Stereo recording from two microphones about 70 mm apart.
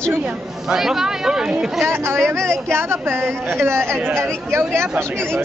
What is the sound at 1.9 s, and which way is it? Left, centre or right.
Speech, right.